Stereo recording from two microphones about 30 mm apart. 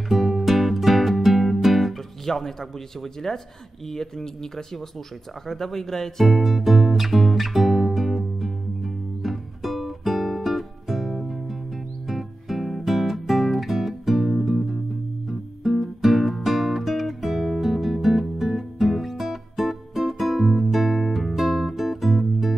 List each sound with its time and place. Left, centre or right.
0.1 s music: centre
2.2 s speech: centre
6.2 s music: centre
21.4 s guitar: centre